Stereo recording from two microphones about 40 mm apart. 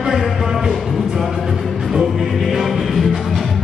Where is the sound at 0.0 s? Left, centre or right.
Centre.